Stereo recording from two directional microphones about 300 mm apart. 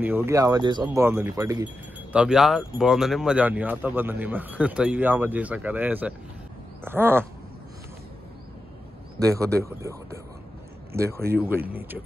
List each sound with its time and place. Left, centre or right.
0.0 s speech: centre
9.2 s speech: centre